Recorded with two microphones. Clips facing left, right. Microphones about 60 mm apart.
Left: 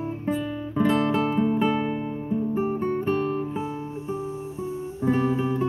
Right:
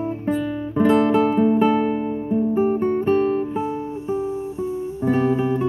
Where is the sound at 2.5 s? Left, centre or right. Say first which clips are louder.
Right 7 dB; centre.